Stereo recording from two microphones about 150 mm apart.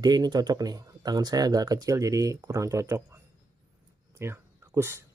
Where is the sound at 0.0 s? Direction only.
25° right (ahead or behind).